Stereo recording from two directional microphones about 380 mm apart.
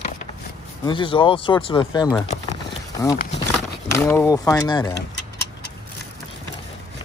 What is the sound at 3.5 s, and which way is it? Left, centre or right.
Speech, centre.